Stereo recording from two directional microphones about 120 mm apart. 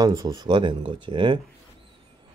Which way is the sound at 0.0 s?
35° right (ahead or behind).